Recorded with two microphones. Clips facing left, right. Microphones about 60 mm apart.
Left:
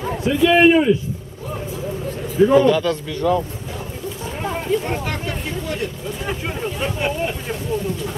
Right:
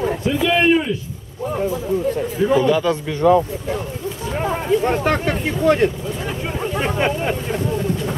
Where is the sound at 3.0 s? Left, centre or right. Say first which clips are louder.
Right 5 dB; right.